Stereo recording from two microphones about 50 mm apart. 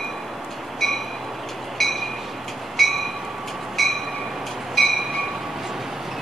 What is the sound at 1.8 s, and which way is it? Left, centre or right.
Train, centre.